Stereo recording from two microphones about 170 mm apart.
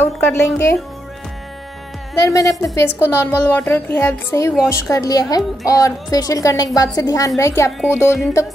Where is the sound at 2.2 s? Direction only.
20° left (ahead or behind).